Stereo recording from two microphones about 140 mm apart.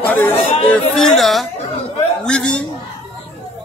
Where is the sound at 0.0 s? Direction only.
10° left (ahead or behind).